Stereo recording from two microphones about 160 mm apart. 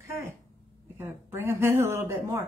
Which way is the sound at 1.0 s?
15° right (ahead or behind).